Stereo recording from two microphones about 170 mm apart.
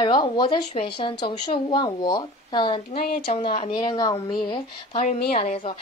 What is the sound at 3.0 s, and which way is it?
Speech, 65° left (ahead or behind).